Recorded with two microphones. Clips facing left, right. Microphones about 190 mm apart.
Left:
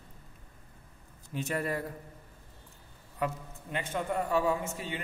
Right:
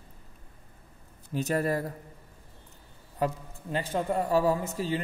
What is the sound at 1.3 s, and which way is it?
Speech, 40° right (ahead or behind).